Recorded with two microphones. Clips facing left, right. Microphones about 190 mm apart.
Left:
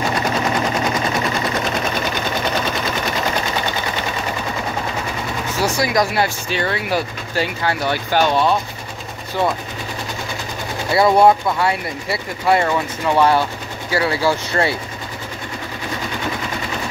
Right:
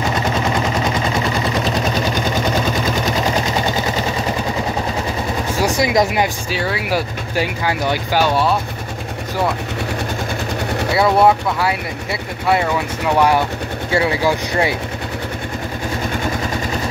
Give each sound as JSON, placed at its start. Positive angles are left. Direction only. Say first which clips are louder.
{"t": 5.6, "sound": "speech", "louder": "right 2 dB", "side_deg": -20}
{"t": 6.5, "sound": "speech", "louder": "even", "side_deg": -5}
{"t": 11.0, "sound": "speech", "louder": "left 1 dB", "side_deg": 0}
{"t": 13.9, "sound": "speech", "louder": "right 1 dB", "side_deg": -20}